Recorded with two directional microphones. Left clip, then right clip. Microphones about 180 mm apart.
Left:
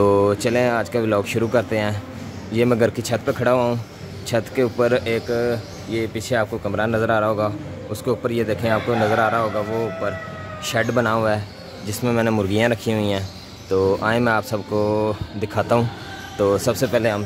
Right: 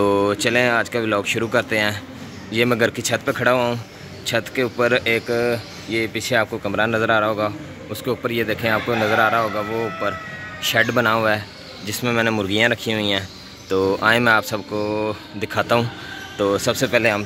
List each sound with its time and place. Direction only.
0.0 s speech: 5° left (ahead or behind)
4.7 s speech: 5° right (ahead or behind)
5.1 s speech: 25° right (ahead or behind); by 8.7 s 5° right (ahead or behind)
8.7 s speech: 15° right (ahead or behind)
11.1 s speech: 5° right (ahead or behind)
13.7 s speech: 10° right (ahead or behind)